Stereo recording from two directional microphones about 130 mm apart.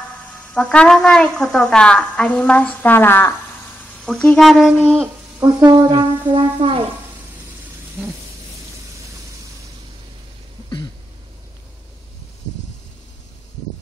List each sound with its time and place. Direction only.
0.6 s a woman's voice: 10° left (ahead or behind); by 5.1 s 10° right (ahead or behind)
5.4 s speech: 30° right (ahead or behind)